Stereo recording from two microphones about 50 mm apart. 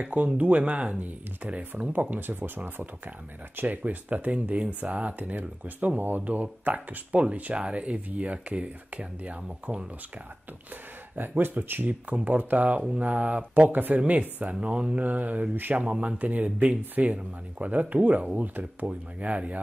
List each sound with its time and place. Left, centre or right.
0.0 s speech: right
11.1 s speech: right